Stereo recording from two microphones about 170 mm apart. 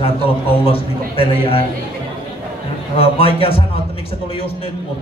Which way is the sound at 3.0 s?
35° left (ahead or behind).